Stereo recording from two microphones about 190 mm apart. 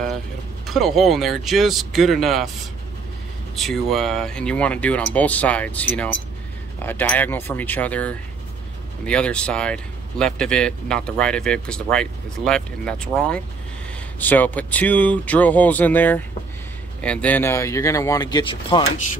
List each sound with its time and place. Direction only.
0.7 s speech: centre (ahead or behind)
3.5 s speech: centre (ahead or behind); by 18.9 s 25° left (ahead or behind)